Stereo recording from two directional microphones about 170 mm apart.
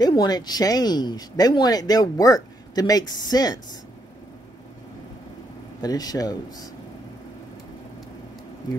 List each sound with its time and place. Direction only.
0.0 s speech: 25° left (ahead or behind)
5.8 s speech: 20° left (ahead or behind)